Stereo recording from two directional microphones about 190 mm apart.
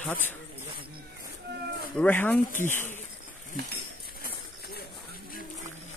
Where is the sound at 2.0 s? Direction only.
10° left (ahead or behind).